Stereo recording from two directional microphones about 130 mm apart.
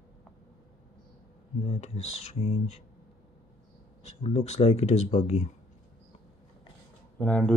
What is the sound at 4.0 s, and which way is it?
Speech, 60° left (ahead or behind).